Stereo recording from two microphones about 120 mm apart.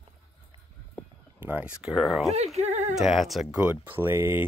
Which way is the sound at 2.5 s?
65° right (ahead or behind).